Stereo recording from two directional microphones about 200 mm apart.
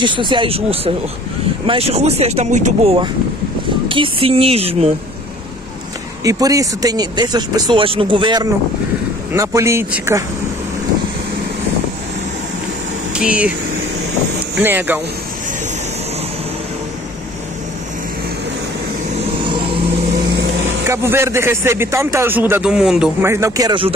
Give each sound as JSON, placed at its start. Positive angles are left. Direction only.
{"t": 0.0, "sound": "speech", "side_deg": -25}
{"t": 6.2, "sound": "speech", "side_deg": -15}
{"t": 13.1, "sound": "speech", "side_deg": -5}
{"t": 14.6, "sound": "speech", "side_deg": -10}
{"t": 20.8, "sound": "speech", "side_deg": -15}